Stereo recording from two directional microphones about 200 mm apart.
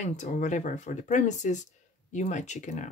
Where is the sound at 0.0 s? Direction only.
35° left (ahead or behind).